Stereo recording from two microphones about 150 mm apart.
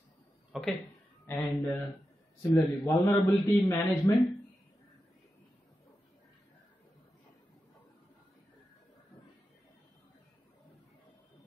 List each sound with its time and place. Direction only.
0.5 s speech: centre (ahead or behind)
1.2 s a man's voice: 15° left (ahead or behind)